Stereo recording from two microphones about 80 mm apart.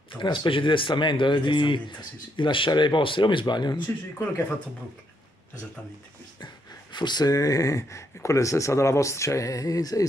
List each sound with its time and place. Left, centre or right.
0.1 s speech: left
6.4 s speech: left